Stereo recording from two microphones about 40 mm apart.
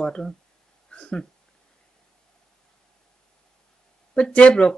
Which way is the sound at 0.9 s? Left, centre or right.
Left.